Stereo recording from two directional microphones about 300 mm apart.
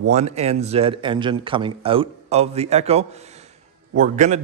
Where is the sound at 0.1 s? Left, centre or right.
Right.